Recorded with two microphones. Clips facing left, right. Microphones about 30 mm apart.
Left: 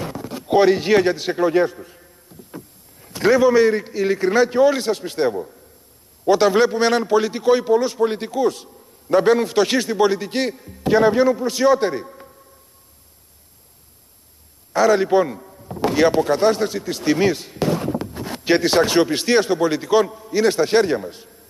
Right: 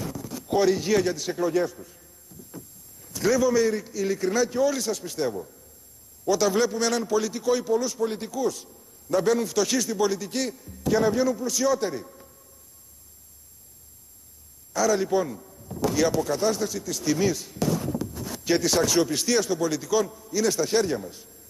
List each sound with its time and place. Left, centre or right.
0.0 s a man's voice: left
14.7 s a man's voice: left